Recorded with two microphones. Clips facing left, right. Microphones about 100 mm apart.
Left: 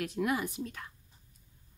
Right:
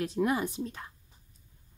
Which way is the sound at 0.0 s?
30° right (ahead or behind).